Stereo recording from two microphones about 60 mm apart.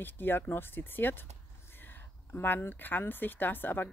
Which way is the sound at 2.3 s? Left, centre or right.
Left.